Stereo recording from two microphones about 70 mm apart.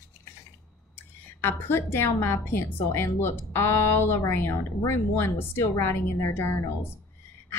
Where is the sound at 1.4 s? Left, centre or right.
Left.